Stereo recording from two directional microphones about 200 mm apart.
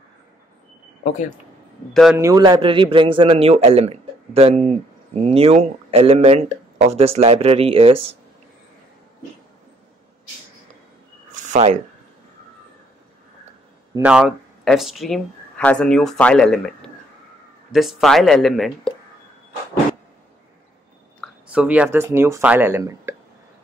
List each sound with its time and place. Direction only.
2.1 s a man's voice: 15° right (ahead or behind)
11.5 s speech: 35° right (ahead or behind)
14.0 s speech: 5° right (ahead or behind)
21.2 s speech: 5° right (ahead or behind)